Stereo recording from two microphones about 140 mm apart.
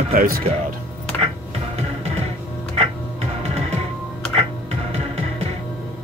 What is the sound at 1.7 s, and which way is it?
Music, 50° right (ahead or behind).